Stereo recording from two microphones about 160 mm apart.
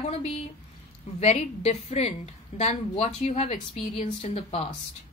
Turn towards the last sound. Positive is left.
turn(degrees=40)  # may be behind; listen again after turning